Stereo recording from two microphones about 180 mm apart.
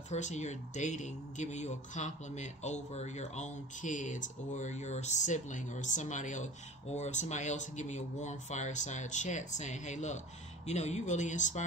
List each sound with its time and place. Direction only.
0.1 s speech: 40° left (ahead or behind)